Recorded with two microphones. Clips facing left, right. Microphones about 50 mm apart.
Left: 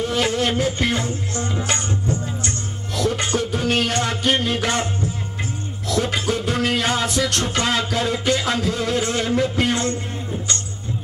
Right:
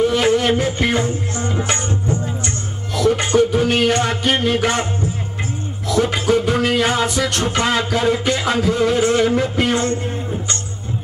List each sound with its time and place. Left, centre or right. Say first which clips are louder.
0.0 s music: right 5 dB; right
5.9 s music: right 5 dB; centre